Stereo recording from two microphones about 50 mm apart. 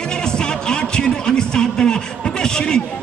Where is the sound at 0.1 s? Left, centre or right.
Centre.